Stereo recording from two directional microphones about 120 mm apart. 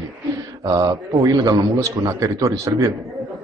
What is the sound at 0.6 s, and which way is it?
A man's voice, 30° right (ahead or behind).